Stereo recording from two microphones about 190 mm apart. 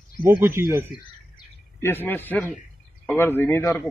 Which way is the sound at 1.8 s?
10° left (ahead or behind).